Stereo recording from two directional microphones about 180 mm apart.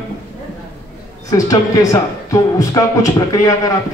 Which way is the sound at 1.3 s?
20° left (ahead or behind).